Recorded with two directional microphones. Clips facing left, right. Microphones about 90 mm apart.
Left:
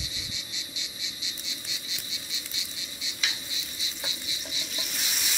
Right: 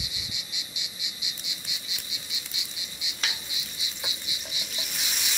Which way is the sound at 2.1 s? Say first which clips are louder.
Even; 15° right (ahead or behind).